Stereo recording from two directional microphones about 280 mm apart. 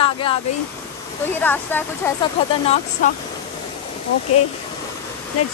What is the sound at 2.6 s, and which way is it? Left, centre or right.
Speech, left.